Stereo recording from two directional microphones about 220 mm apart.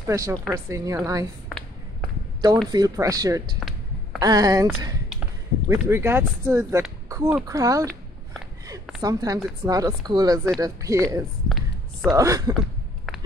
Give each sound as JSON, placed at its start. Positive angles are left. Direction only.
{"t": 0.0, "sound": "speech", "side_deg": -15}
{"t": 2.7, "sound": "speech", "side_deg": -15}
{"t": 3.5, "sound": "a sound", "side_deg": 0}
{"t": 4.2, "sound": "speech", "side_deg": -15}
{"t": 5.7, "sound": "speech", "side_deg": -10}
{"t": 9.0, "sound": "speech", "side_deg": -15}
{"t": 11.4, "sound": "a sound", "side_deg": 0}
{"t": 12.1, "sound": "speech", "side_deg": -15}